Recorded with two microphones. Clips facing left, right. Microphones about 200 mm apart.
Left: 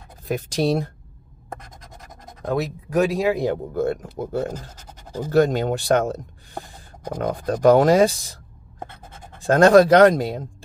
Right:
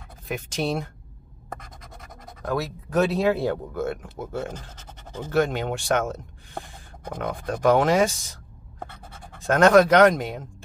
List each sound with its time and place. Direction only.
0.3 s speech: 35° left (ahead or behind)
2.4 s speech: 20° left (ahead or behind)
2.9 s speech: 10° left (ahead or behind)
3.7 s speech: 35° left (ahead or behind)
9.4 s speech: 30° left (ahead or behind)